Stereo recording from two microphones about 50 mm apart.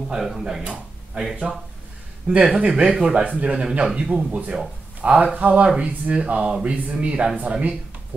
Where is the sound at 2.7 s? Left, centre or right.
Centre.